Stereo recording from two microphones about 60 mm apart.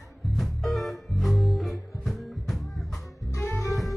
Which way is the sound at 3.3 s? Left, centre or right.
Left.